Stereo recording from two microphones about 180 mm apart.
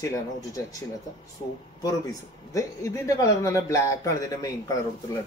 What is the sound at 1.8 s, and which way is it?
A man's voice, 20° left (ahead or behind).